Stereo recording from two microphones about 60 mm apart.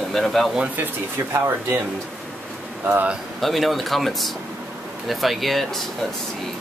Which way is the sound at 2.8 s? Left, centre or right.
Right.